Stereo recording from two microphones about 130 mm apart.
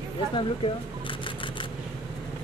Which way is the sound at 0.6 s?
45° left (ahead or behind).